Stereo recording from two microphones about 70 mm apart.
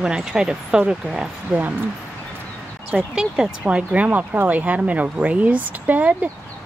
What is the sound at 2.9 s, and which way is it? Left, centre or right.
Speech, centre.